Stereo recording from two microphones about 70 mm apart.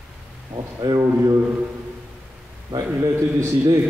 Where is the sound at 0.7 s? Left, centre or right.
Right.